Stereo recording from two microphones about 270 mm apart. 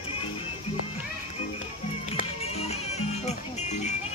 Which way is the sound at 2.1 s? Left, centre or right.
Left.